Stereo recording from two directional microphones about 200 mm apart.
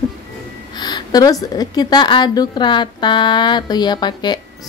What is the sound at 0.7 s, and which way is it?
A woman's voice, 20° left (ahead or behind).